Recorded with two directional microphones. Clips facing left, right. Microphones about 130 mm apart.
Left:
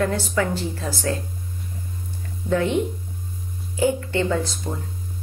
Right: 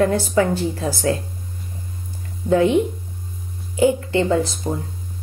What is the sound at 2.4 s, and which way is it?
Speech, 45° right (ahead or behind).